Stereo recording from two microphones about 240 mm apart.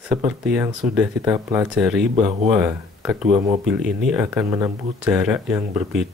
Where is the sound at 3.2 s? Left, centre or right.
Right.